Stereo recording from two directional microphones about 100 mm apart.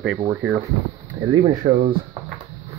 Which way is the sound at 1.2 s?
55° right (ahead or behind).